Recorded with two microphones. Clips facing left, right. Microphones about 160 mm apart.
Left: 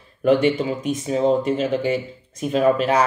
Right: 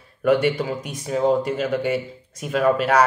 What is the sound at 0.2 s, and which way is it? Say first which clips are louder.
A man's voice: left 2 dB; 30° left (ahead or behind).